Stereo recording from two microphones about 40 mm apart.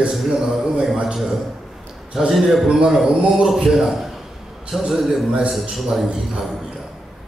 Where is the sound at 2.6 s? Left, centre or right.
Centre.